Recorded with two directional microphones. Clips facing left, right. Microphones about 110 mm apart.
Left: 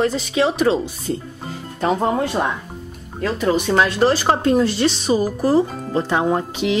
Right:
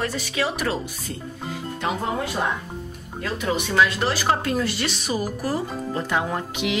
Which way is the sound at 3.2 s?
40° left (ahead or behind).